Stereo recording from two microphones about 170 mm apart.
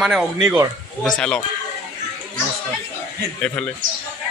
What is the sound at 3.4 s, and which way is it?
Speech, 10° left (ahead or behind).